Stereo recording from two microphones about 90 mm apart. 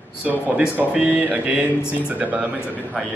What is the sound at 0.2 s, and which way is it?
Speech, 15° right (ahead or behind).